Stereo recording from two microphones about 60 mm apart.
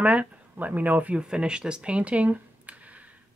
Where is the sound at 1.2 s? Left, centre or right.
Centre.